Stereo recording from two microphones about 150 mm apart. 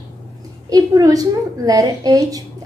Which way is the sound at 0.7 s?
25° right (ahead or behind).